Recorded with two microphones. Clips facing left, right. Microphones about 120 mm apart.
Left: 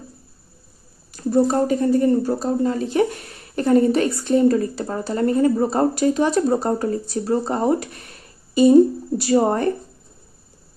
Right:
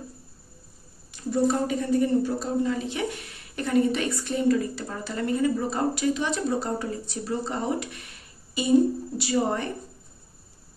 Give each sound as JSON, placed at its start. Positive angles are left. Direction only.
{"t": 1.1, "sound": "speech", "side_deg": 40}